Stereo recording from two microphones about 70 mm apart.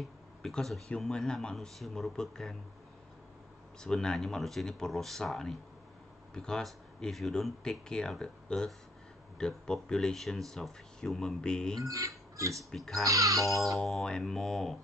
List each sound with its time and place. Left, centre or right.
0.4 s speech: centre
3.8 s speech: centre
11.8 s speech: right
12.7 s speech: centre
13.0 s speech: right
13.8 s speech: centre